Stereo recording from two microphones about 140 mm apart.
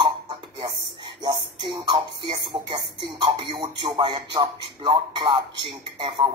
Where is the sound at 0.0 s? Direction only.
35° right (ahead or behind).